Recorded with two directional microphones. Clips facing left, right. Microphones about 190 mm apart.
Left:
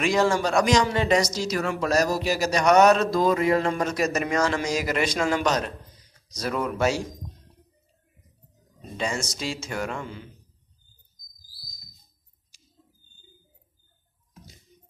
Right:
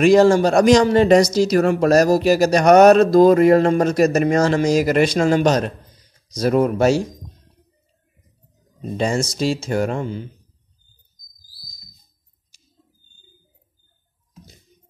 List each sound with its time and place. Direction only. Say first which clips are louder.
0.0 s speech: right 10 dB; 35° right (ahead or behind); by 2.1 s 55° right (ahead or behind)
2.1 s speech: right 9 dB; 40° right (ahead or behind)
8.9 s speech: right 8 dB; 35° right (ahead or behind)